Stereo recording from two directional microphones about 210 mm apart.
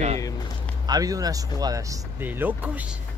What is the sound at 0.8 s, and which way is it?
Speech, 15° right (ahead or behind).